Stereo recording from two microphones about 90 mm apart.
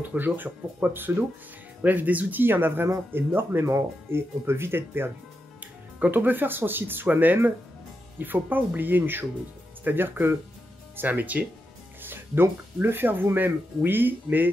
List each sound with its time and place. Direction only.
0.0 s speech: 20° right (ahead or behind)